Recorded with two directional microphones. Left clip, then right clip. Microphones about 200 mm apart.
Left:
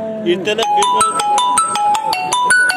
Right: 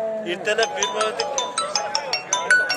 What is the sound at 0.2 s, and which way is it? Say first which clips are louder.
Speech: left 7 dB; 35° right (ahead or behind).